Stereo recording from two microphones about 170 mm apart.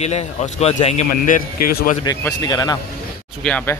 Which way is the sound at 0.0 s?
40° left (ahead or behind).